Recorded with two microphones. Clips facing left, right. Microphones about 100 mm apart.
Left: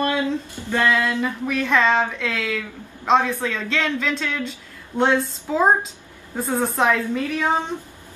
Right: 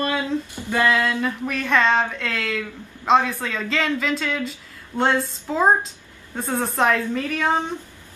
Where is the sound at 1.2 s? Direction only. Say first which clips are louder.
Left 1 dB; centre (ahead or behind).